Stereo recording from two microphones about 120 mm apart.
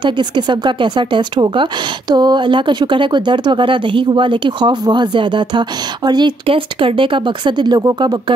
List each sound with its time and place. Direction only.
0.0 s speech: 40° right (ahead or behind)